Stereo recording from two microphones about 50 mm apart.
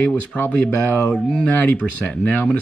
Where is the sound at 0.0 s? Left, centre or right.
Left.